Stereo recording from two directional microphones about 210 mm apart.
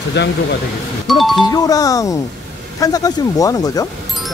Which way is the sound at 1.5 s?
15° left (ahead or behind).